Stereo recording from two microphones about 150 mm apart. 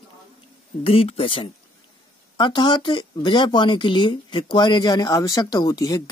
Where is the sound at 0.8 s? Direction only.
40° left (ahead or behind).